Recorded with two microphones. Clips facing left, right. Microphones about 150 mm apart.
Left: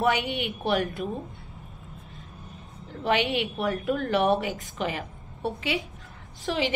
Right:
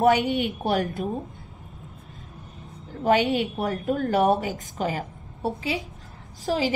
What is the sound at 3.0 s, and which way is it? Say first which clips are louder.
A woman's voice: right 4 dB; 40° right (ahead or behind).